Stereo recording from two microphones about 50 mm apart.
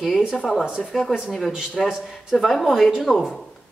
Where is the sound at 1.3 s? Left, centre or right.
Centre.